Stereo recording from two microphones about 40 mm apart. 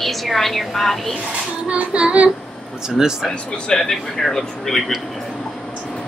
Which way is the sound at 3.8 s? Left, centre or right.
Centre.